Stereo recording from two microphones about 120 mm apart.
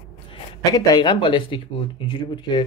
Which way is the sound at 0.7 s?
35° left (ahead or behind).